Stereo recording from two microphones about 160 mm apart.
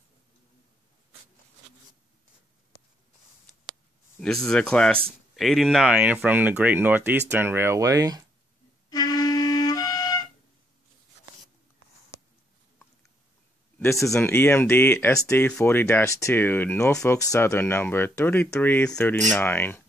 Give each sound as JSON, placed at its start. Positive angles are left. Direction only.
{"t": 4.2, "sound": "speech", "side_deg": 5}
{"t": 5.9, "sound": "speech", "side_deg": -10}
{"t": 8.9, "sound": "flute", "side_deg": 25}
{"t": 13.7, "sound": "speech", "side_deg": 20}